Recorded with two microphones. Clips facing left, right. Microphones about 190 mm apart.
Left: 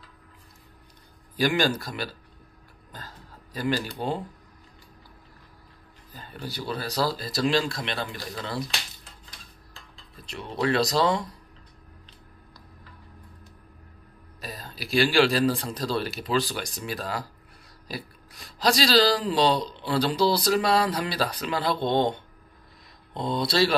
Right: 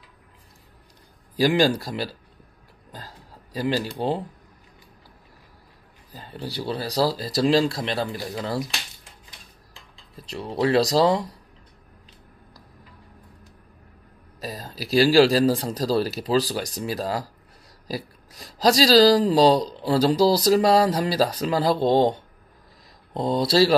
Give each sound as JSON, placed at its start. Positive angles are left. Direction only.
{"t": 1.3, "sound": "speech", "side_deg": -35}
{"t": 2.9, "sound": "a sound", "side_deg": -30}
{"t": 6.1, "sound": "speech", "side_deg": -30}
{"t": 10.1, "sound": "speech", "side_deg": -35}
{"t": 14.4, "sound": "speech", "side_deg": -35}